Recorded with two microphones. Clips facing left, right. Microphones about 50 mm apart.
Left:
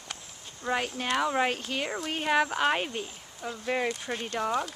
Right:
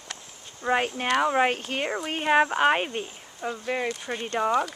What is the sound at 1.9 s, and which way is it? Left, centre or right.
Speech, centre.